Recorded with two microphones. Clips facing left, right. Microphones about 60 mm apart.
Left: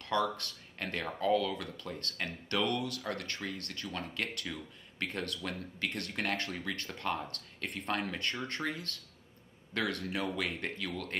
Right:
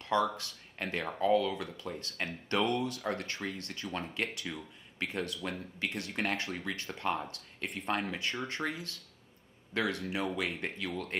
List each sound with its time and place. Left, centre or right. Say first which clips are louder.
0.0 s a sound: right 2 dB; right
0.7 s speech: right 2 dB; right
7.6 s speech: right 1 dB; centre
9.7 s speech: right 1 dB; centre